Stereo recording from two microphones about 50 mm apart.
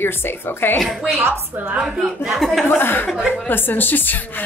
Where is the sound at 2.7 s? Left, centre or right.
Left.